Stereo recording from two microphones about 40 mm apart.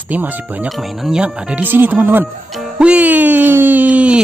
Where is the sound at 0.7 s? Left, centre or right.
Centre.